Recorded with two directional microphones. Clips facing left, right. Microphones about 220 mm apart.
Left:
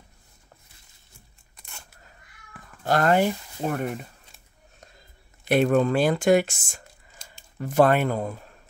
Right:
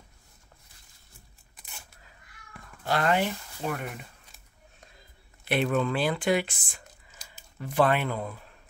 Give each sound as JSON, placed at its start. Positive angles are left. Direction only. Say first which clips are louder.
{"t": 1.6, "sound": "a sound", "louder": "left 2 dB", "side_deg": 0}
{"t": 2.9, "sound": "speech", "louder": "left 5 dB", "side_deg": 45}
{"t": 5.5, "sound": "speech", "louder": "left 6 dB", "side_deg": 45}